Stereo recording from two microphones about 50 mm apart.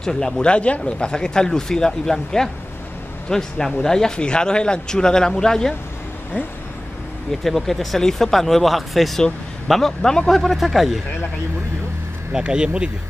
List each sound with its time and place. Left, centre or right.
0.0 s speech: centre
7.4 s speech: centre
12.3 s speech: centre